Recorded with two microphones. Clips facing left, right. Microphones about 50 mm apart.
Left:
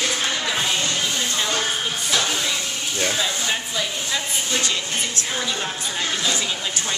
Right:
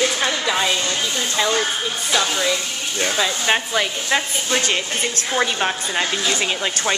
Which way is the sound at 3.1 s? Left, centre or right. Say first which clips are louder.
Right 5 dB; right.